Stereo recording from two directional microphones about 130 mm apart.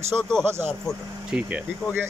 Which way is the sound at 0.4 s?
15° right (ahead or behind).